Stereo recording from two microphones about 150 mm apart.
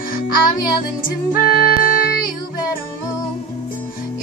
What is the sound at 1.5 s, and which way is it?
Music, 85° left.